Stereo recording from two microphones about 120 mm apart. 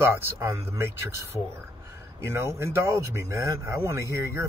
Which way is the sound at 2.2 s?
20° right (ahead or behind).